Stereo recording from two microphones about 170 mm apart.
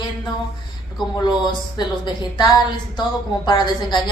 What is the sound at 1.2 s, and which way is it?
A woman's voice, 25° left (ahead or behind).